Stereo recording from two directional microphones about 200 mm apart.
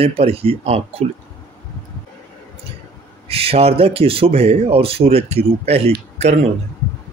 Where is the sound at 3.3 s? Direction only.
30° right (ahead or behind).